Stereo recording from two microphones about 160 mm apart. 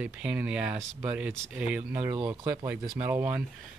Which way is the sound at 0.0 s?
5° right (ahead or behind).